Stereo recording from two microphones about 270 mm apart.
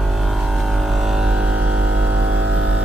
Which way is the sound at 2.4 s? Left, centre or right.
Right.